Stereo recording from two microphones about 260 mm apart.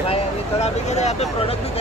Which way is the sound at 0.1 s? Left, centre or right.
Left.